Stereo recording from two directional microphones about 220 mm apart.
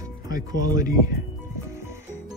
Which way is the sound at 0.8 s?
15° right (ahead or behind).